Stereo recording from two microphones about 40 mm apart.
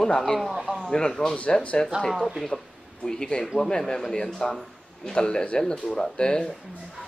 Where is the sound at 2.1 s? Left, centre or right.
Centre.